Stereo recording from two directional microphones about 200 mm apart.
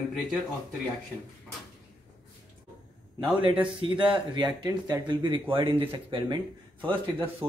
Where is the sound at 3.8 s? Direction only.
25° right (ahead or behind).